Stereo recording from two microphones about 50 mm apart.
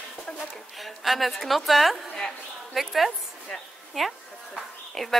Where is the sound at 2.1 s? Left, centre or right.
Centre.